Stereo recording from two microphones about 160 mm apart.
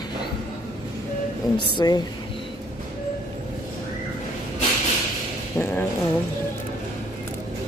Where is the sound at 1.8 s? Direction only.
25° left (ahead or behind).